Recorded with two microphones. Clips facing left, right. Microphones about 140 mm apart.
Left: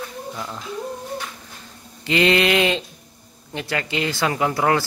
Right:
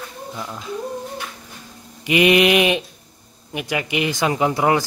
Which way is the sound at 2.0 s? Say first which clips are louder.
Right 3 dB; 15° right (ahead or behind).